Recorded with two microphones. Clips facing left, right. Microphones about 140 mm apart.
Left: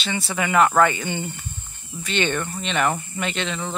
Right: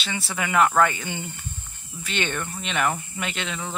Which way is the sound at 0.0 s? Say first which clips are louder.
Left 4 dB; 5° right (ahead or behind).